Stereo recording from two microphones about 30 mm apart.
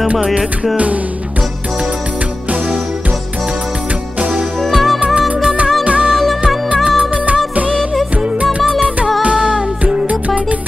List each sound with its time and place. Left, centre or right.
4.6 s music: centre
5.9 s music: right
7.5 s music of bollywood: right
8.5 s music: right